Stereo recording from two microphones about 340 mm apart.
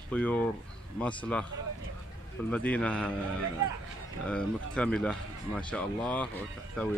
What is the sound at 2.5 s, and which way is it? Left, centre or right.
Speech, centre.